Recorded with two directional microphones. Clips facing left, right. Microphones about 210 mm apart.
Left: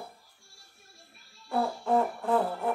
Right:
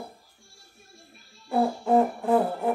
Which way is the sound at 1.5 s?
10° right (ahead or behind).